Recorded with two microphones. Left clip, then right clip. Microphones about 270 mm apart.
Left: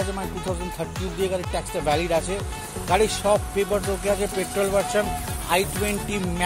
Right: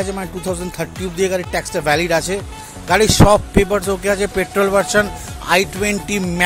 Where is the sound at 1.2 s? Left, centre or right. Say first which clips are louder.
Right 8 dB; right.